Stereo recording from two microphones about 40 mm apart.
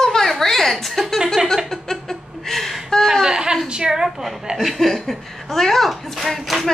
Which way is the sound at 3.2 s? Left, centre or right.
Centre.